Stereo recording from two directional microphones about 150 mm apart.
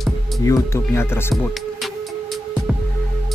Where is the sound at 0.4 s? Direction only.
20° left (ahead or behind).